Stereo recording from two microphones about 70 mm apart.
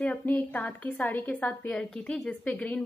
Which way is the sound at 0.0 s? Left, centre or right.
Left.